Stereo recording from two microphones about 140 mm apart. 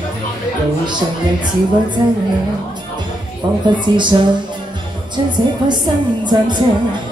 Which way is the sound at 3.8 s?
35° right (ahead or behind).